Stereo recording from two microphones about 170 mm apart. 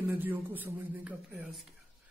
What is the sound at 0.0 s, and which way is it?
Speech, 10° right (ahead or behind).